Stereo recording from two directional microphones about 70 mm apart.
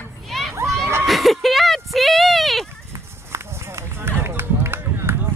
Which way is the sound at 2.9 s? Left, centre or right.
Right.